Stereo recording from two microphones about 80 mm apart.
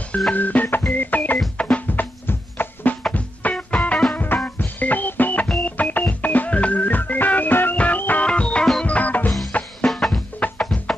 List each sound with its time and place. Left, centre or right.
0.3 s organ: centre
0.9 s music: left
9.8 s music: centre